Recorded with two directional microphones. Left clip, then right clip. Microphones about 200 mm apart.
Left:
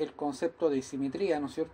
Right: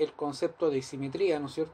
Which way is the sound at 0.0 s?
25° left (ahead or behind).